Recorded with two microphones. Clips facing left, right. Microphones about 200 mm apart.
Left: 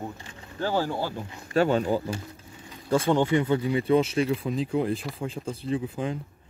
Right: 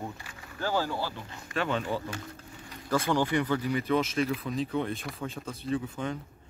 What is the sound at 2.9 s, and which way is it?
Speech, 25° left (ahead or behind).